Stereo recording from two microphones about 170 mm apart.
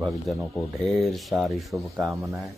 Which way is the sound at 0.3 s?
Centre (ahead or behind).